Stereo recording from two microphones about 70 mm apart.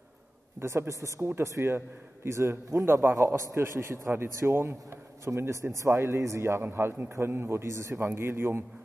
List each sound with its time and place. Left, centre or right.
0.6 s a man's voice: right
3.2 s a man's voice: right